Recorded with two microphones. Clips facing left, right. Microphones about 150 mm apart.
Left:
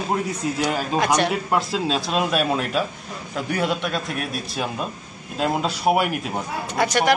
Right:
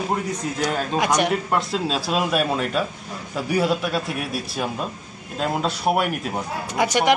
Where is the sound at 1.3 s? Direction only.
5° left (ahead or behind).